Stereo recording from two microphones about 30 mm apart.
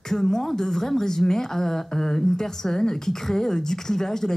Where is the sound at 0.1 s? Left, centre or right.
Centre.